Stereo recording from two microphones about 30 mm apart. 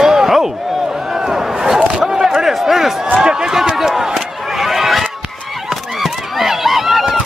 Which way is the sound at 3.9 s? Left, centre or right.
Centre.